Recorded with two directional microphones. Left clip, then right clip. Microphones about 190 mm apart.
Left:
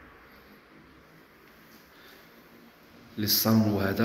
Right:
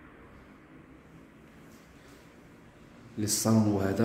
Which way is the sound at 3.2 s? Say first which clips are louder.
Left 2 dB; 15° right (ahead or behind).